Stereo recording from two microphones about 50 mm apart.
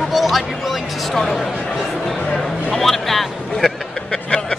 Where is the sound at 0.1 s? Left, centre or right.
Centre.